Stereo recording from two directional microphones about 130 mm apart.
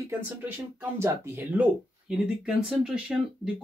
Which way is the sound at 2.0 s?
5° right (ahead or behind).